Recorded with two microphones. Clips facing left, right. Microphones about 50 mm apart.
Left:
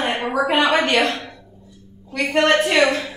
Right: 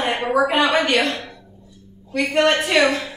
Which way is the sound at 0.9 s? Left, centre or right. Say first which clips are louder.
Left 1 dB; left.